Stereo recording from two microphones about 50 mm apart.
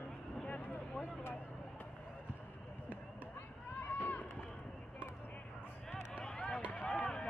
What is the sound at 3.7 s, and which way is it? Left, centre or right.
Run, left.